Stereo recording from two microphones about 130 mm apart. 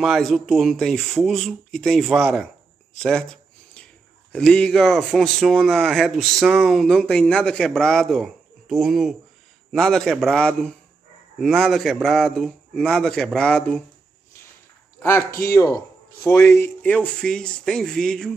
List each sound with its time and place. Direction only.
0.0 s a man's voice: centre (ahead or behind)
15.0 s speech: 20° left (ahead or behind)